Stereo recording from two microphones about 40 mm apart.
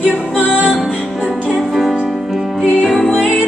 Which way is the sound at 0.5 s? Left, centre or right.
Right.